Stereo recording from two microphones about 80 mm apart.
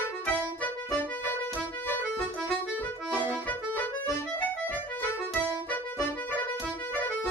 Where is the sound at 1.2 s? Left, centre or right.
Left.